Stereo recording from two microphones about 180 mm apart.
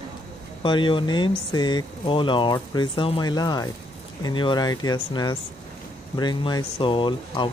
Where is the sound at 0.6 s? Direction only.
25° left (ahead or behind).